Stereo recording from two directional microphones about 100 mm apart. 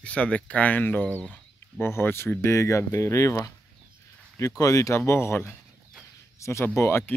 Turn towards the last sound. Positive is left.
turn(degrees=25)  # may be behind; listen again after turning